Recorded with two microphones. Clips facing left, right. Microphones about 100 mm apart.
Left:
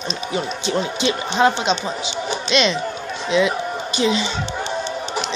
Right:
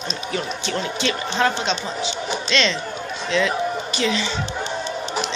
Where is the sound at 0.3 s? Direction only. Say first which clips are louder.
Left 3 dB; 20° left (ahead or behind).